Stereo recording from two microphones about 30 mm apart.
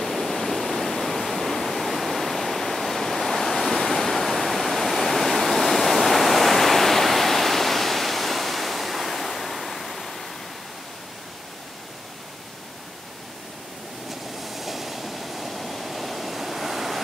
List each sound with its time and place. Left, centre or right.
0.0 s waterfall: centre
14.4 s train: centre